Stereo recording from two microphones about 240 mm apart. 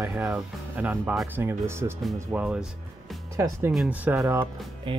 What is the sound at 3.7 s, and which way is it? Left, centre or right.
Speech, centre.